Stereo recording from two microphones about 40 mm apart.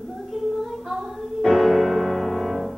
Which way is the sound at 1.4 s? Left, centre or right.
Centre.